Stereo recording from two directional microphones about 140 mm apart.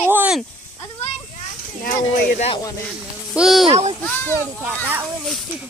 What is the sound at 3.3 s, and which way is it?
Speech, centre (ahead or behind).